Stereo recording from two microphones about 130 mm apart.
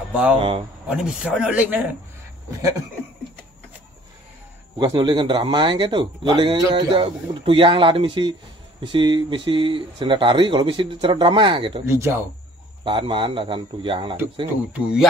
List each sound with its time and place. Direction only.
0.1 s speech: 10° right (ahead or behind)
4.7 s speech: 35° right (ahead or behind)
11.8 s speech: 20° right (ahead or behind)
12.8 s speech: 40° right (ahead or behind)
14.7 s speech: 5° right (ahead or behind)